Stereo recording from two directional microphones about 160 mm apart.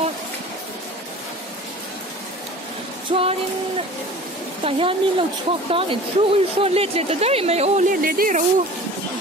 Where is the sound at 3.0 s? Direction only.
35° right (ahead or behind).